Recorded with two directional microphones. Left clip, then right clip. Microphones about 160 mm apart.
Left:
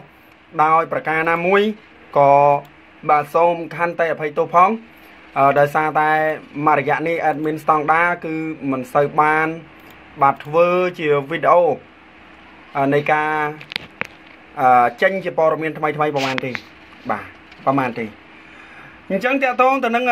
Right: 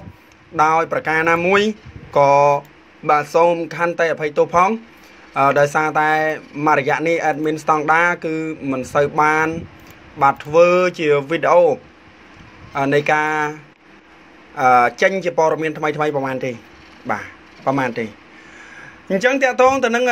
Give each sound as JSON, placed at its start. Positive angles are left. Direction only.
{"t": 0.6, "sound": "a man's voice", "side_deg": -10}
{"t": 19.0, "sound": "a man's voice", "side_deg": -15}